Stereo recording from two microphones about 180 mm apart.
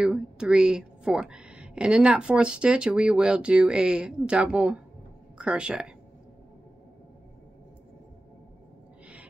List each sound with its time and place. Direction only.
0.0 s speech: 5° right (ahead or behind)